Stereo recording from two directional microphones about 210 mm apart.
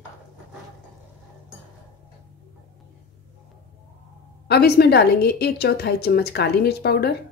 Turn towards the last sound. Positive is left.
turn(degrees=50)  # may be behind; listen again after turning